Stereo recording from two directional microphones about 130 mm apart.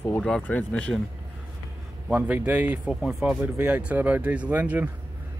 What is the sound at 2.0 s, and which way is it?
Speech, 10° right (ahead or behind).